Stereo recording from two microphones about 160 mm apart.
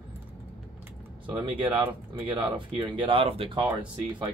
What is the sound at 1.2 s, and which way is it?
Speech, 30° right (ahead or behind).